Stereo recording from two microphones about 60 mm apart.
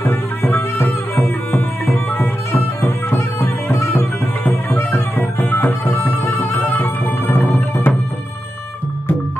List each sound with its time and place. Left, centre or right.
0.0 s music: left